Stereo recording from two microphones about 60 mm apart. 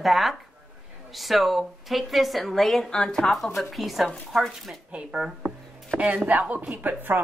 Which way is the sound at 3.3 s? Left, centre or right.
Centre.